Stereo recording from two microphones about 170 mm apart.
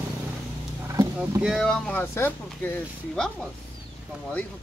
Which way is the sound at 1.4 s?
Centre (ahead or behind).